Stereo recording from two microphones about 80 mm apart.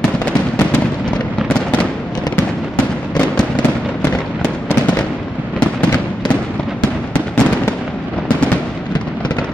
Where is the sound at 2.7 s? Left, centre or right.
Centre.